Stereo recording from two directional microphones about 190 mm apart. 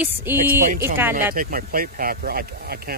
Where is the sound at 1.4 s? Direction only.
50° right (ahead or behind).